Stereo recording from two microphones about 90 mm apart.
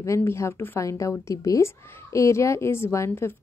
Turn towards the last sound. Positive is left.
turn(degrees=30)  # may be behind; listen again after turning